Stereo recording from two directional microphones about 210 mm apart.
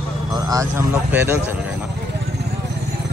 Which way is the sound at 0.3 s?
15° right (ahead or behind).